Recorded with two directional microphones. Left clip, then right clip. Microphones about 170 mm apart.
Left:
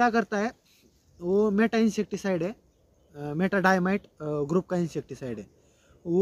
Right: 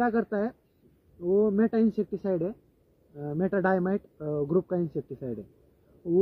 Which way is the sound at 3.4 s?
45° left (ahead or behind).